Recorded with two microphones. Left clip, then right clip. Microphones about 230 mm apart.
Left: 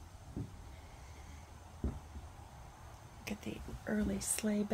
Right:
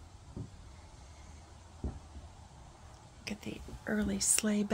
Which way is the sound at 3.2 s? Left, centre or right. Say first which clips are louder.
Right 2 dB; centre.